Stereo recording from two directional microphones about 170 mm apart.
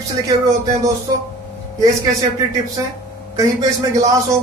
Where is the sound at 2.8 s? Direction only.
15° right (ahead or behind).